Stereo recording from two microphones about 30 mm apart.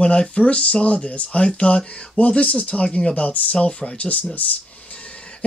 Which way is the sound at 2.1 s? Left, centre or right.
Left.